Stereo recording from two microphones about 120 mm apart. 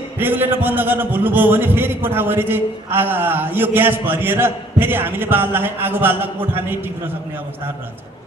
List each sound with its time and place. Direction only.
0.2 s a man's voice: 15° right (ahead or behind)